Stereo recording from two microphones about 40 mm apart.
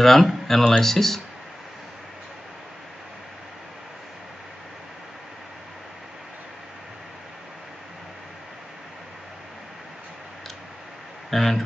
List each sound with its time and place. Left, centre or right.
0.0 s speech: centre
11.2 s speech: centre